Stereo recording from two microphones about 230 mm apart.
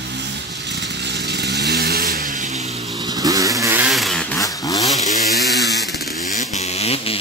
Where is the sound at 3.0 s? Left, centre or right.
Centre.